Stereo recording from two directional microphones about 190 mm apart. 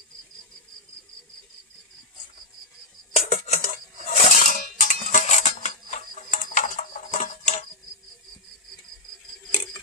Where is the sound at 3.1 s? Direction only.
35° left (ahead or behind).